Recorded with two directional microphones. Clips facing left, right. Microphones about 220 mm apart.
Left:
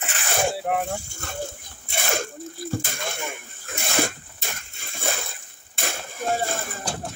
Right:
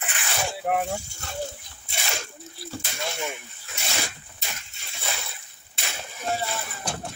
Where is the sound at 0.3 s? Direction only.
50° left (ahead or behind).